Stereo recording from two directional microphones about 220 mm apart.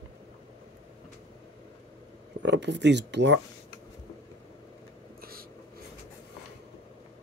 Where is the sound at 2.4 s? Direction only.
50° right (ahead or behind).